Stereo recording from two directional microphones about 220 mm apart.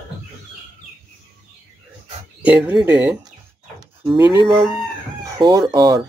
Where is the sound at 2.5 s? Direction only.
5° right (ahead or behind).